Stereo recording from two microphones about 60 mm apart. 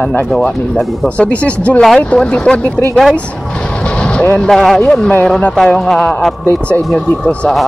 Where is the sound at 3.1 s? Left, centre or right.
Centre.